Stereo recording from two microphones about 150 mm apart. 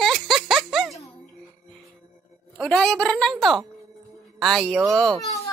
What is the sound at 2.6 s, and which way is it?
Speech, 5° left (ahead or behind).